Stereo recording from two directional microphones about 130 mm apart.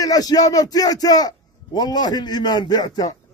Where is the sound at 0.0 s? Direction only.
30° left (ahead or behind).